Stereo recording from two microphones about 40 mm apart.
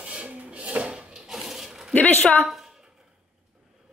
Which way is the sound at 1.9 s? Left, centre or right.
Left.